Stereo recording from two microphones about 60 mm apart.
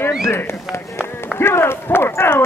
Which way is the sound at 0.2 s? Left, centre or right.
Left.